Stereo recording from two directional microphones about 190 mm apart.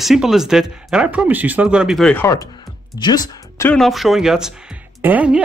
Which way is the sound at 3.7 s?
Centre (ahead or behind).